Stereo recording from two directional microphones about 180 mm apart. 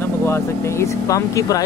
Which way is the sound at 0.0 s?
15° left (ahead or behind).